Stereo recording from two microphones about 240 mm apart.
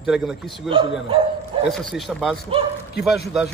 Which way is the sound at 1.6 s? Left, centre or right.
Centre.